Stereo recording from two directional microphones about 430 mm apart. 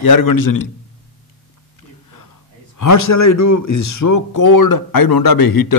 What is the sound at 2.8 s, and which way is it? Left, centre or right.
A man's voice, left.